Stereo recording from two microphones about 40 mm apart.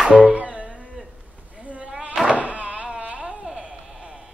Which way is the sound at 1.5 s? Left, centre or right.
Right.